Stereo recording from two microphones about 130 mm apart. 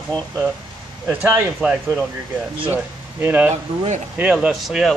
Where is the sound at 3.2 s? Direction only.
15° right (ahead or behind).